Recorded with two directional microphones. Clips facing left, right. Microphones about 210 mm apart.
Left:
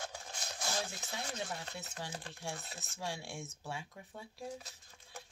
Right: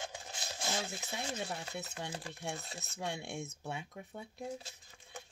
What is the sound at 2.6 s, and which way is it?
Speech, centre (ahead or behind).